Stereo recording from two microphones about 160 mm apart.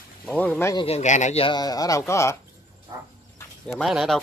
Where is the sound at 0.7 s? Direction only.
40° left (ahead or behind); by 2.3 s 15° left (ahead or behind).